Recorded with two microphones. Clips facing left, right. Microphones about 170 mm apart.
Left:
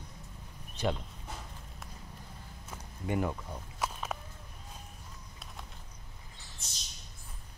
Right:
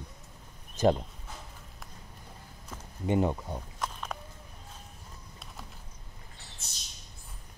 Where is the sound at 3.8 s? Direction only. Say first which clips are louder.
Left 3 dB; 5° left (ahead or behind).